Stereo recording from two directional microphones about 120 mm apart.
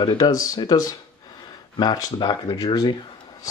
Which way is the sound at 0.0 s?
35° left (ahead or behind).